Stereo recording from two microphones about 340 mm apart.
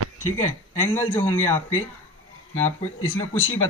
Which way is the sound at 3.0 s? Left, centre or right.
Left.